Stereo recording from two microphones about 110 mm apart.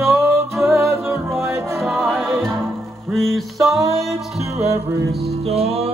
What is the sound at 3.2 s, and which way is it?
Music, centre (ahead or behind).